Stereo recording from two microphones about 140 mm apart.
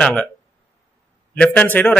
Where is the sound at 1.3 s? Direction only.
10° left (ahead or behind).